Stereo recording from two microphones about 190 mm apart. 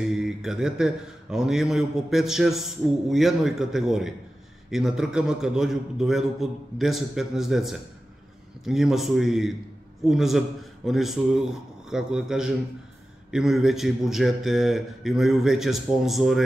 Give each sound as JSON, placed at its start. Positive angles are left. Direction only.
{"t": 0.1, "sound": "mantra", "side_deg": 0}